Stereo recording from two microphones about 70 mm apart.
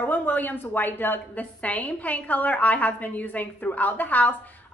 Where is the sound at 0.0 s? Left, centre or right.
Left.